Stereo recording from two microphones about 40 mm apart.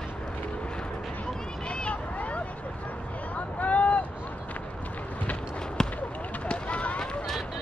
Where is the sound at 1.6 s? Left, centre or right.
Left.